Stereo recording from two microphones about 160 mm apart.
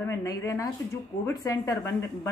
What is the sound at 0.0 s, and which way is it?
A woman's voice, 20° left (ahead or behind).